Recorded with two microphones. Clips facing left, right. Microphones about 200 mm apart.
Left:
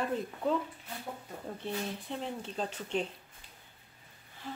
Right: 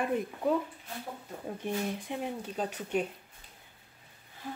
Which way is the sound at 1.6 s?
15° right (ahead or behind).